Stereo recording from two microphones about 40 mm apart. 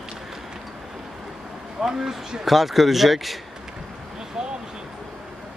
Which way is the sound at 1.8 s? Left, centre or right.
Centre.